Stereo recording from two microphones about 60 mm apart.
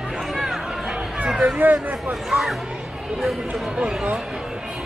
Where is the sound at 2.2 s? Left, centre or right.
Centre.